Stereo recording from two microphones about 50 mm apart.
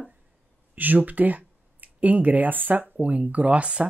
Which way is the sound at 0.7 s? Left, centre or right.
Right.